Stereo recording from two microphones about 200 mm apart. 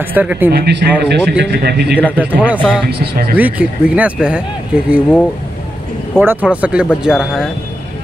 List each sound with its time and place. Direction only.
0.1 s speech: 10° right (ahead or behind)
0.5 s a man's voice: 55° right (ahead or behind)
2.0 s speech: 10° right (ahead or behind)
2.9 s a man's voice: 55° right (ahead or behind)
3.3 s speech: 5° right (ahead or behind)
6.1 s speech: 10° right (ahead or behind)